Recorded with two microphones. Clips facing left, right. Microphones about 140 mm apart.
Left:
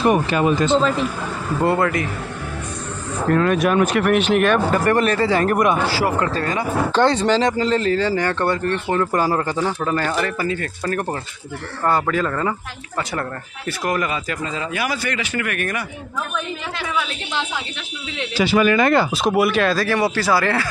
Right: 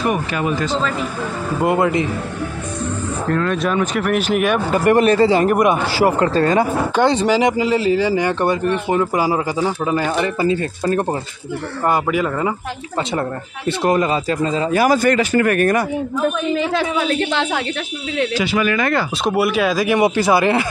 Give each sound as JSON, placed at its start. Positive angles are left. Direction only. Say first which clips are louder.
{"t": 0.1, "sound": "speech", "louder": "left 3 dB", "side_deg": 30}
{"t": 1.6, "sound": "speech", "louder": "right 2 dB", "side_deg": -15}
{"t": 3.4, "sound": "speech", "louder": "left 2 dB", "side_deg": 10}
{"t": 7.0, "sound": "speech", "louder": "right 2 dB", "side_deg": -15}
{"t": 10.2, "sound": "speech", "louder": "right 5 dB", "side_deg": -25}
{"t": 13.7, "sound": "speech", "louder": "right 6 dB", "side_deg": -25}
{"t": 16.8, "sound": "speech", "louder": "right 4 dB", "side_deg": -35}
{"t": 17.1, "sound": "a woman's voice", "louder": "right 8 dB", "side_deg": -60}
{"t": 18.3, "sound": "speech", "louder": "left 6 dB", "side_deg": 30}
{"t": 19.2, "sound": "speech", "louder": "even", "side_deg": 0}